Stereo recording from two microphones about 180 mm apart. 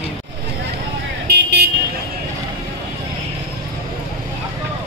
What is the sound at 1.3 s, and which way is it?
Vehicle, 65° right (ahead or behind).